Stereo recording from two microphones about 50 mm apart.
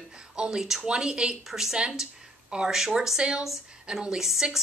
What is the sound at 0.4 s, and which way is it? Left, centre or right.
Speech, centre.